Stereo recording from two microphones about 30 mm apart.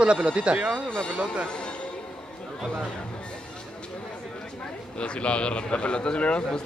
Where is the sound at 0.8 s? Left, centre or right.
Left.